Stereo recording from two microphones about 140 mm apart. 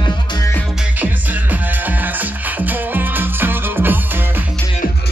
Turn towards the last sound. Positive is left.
turn(degrees=-15)  # may be behind; listen again after turning